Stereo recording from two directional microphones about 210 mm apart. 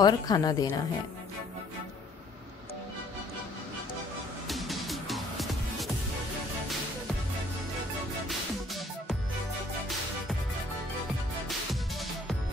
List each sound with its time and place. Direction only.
0.0 s a woman's voice: 20° left (ahead or behind)
4.5 s music: centre (ahead or behind)